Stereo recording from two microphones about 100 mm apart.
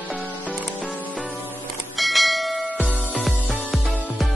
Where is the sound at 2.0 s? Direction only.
Centre (ahead or behind).